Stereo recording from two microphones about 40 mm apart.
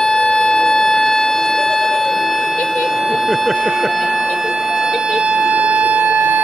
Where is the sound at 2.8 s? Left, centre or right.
Centre.